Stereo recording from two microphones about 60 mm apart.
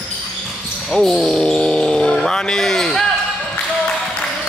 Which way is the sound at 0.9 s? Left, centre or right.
Centre.